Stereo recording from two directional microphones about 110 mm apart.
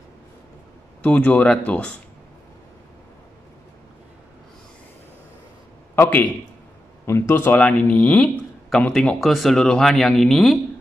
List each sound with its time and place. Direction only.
1.0 s speech: 15° left (ahead or behind)
5.9 s a man's voice: 15° left (ahead or behind)